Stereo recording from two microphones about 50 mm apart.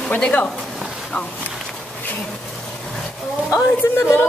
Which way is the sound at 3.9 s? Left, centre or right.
Left.